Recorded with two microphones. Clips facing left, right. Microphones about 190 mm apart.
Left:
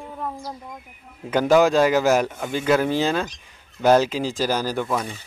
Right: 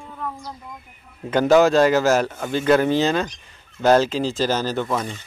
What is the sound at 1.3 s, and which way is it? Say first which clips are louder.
A man's voice: right 2 dB; 10° left (ahead or behind).